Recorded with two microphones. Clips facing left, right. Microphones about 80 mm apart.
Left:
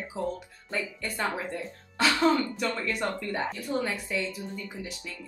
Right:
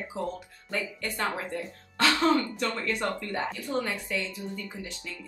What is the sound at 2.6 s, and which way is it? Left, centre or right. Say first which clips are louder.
Speech: even; centre.